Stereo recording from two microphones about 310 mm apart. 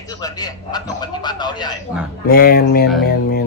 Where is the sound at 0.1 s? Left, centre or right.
Centre.